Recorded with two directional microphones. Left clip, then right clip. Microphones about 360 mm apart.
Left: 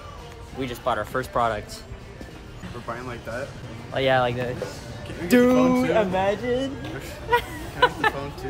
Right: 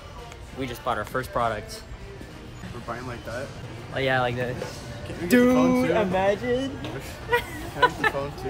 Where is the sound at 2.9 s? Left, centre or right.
Centre.